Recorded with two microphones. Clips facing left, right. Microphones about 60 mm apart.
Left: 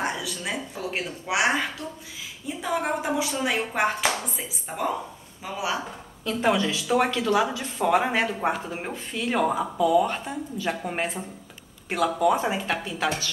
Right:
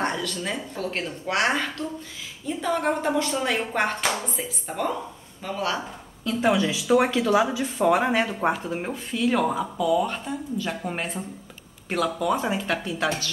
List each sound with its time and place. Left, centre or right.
0.0 s speech: centre
6.2 s speech: centre
9.8 s speech: left
10.0 s speech: centre